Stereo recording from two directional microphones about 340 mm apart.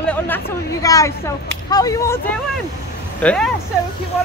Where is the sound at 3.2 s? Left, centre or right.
Centre.